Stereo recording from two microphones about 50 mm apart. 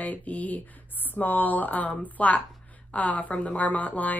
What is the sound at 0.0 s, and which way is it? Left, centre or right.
Speech, left.